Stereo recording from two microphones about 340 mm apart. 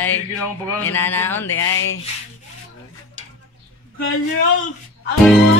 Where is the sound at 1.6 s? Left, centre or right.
Left.